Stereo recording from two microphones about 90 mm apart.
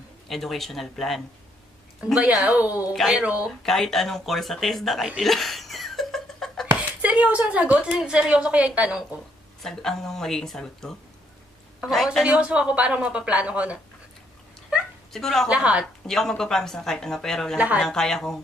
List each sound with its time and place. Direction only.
0.3 s speech: centre (ahead or behind)
2.3 s speech: 10° right (ahead or behind)
2.9 s speech: centre (ahead or behind)
3.6 s speech: 5° left (ahead or behind)
5.2 s laughter: centre (ahead or behind)
7.0 s a sound: 15° right (ahead or behind)
7.9 s speech: 10° right (ahead or behind)
9.6 s speech: 5° left (ahead or behind)
12.3 s speech: 10° right (ahead or behind)
15.1 s speech: 5° left (ahead or behind)
15.5 s speech: 15° right (ahead or behind)
15.8 s speech: 5° left (ahead or behind)
17.6 s speech: 15° right (ahead or behind)
17.8 s speech: 5° left (ahead or behind)